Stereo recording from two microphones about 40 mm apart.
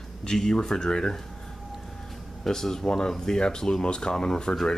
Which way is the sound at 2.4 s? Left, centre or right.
Centre.